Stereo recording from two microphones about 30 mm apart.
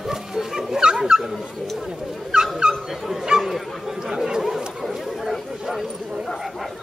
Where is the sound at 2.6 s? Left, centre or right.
Right.